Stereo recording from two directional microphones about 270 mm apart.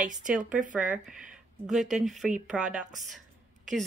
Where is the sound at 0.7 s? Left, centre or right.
Centre.